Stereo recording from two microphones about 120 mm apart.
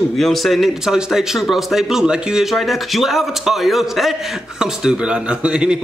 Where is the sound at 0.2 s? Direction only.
Centre (ahead or behind).